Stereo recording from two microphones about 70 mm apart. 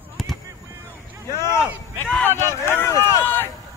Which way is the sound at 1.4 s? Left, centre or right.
Left.